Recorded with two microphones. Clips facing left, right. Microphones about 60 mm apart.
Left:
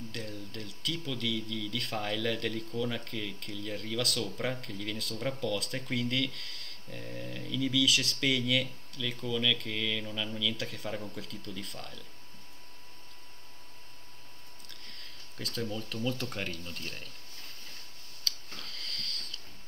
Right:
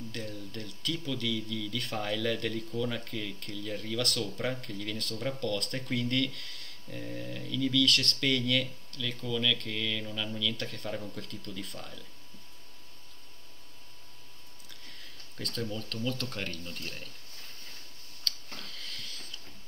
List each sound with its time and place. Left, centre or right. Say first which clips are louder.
0.1 s speech: right 1 dB; centre
14.7 s speech: right 1 dB; centre
18.2 s tick-tock: right 1 dB; centre